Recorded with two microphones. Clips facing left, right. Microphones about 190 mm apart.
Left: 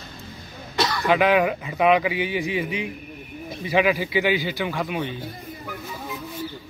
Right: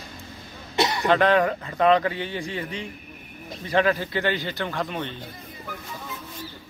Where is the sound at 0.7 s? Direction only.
20° right (ahead or behind).